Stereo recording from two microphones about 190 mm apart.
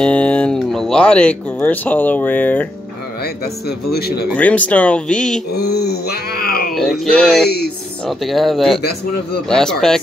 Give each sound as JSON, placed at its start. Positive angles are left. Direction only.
{"t": 0.0, "sound": "speech", "side_deg": 5}
{"t": 3.6, "sound": "groan", "side_deg": 55}
{"t": 4.4, "sound": "speech", "side_deg": 5}
{"t": 5.6, "sound": "groan", "side_deg": 60}
{"t": 6.7, "sound": "speech", "side_deg": 0}
{"t": 7.4, "sound": "groan", "side_deg": 55}
{"t": 8.1, "sound": "speech", "side_deg": 0}